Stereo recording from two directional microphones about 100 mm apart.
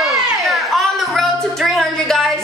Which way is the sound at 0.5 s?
Centre (ahead or behind).